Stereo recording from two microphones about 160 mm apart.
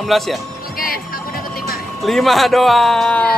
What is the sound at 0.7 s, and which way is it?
Music, 65° left (ahead or behind).